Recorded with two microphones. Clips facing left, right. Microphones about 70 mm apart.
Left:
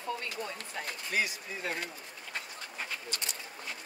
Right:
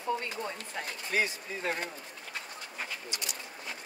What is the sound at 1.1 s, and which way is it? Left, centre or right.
Speech, right.